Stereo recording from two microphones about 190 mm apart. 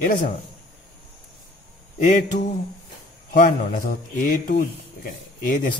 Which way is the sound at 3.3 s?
45° left (ahead or behind).